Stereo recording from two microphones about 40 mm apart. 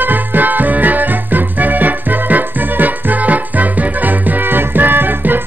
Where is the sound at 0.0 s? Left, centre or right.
Right.